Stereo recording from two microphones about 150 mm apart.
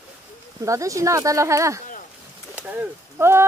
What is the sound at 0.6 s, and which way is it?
Speech, 20° right (ahead or behind).